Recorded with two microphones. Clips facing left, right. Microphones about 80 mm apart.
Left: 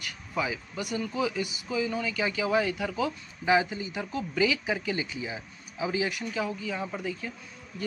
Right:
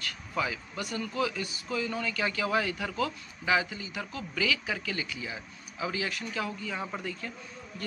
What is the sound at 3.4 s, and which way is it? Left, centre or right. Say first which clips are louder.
Speech: left 4 dB; left.